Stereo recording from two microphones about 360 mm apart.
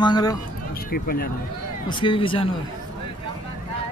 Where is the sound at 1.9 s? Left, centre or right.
Centre.